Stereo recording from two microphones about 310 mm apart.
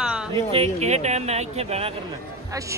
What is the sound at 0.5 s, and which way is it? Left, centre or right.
Speech, centre.